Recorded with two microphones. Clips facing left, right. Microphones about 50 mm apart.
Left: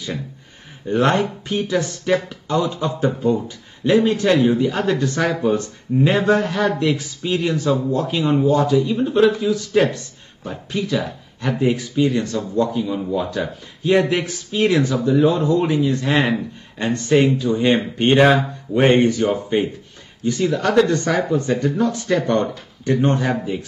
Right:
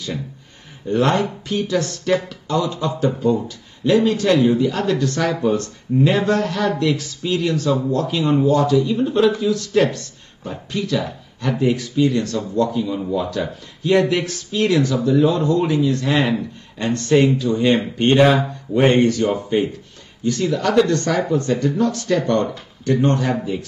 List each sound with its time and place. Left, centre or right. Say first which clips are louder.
0.8 s speech: even; left